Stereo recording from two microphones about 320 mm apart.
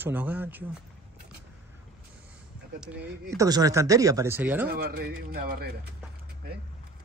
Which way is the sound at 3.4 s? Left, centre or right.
Centre.